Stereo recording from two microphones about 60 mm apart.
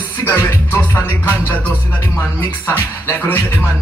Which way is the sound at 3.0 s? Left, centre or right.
Left.